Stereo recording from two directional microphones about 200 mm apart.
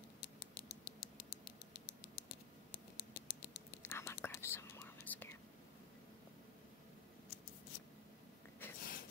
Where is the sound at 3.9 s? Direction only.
10° left (ahead or behind).